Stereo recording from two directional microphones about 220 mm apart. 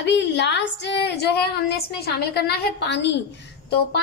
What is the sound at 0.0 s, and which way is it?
A woman's voice, 50° left (ahead or behind).